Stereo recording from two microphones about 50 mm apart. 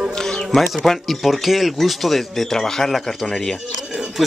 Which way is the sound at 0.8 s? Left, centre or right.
Centre.